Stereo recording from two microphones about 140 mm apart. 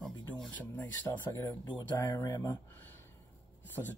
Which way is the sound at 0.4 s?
10° left (ahead or behind).